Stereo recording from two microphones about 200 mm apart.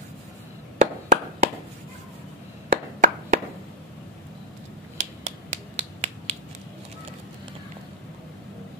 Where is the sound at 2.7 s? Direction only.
45° right (ahead or behind).